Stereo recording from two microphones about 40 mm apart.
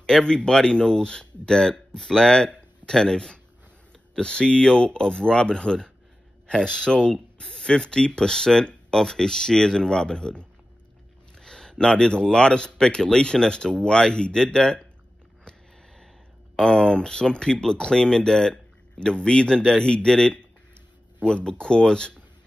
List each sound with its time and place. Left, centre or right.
0.0 s speech: centre
16.6 s speech: left
18.5 s speech: left